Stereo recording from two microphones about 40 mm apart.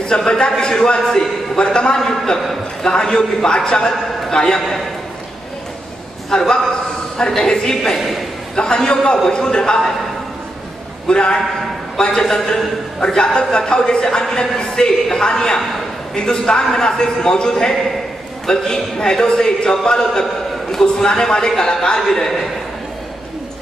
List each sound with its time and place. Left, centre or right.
0.0 s a man's voice: centre
2.0 s a man's voice: centre
6.3 s a man's voice: centre
11.1 s a man's voice: left
13.2 s a man's voice: left